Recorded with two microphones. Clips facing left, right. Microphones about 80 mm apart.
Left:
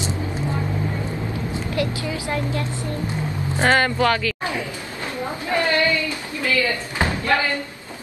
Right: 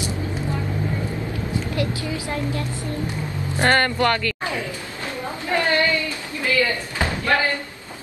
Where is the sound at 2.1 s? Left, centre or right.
Left.